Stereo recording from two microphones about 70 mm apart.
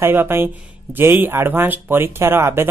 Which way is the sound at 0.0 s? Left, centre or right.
Right.